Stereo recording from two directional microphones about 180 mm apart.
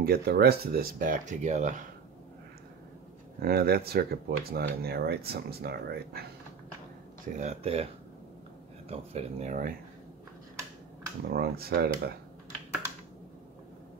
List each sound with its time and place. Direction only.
0.0 s speech: 60° right (ahead or behind); by 1.9 s 45° right (ahead or behind)
3.3 s speech: 60° right (ahead or behind)
7.3 s speech: 35° right (ahead or behind)
11.2 s speech: 60° right (ahead or behind)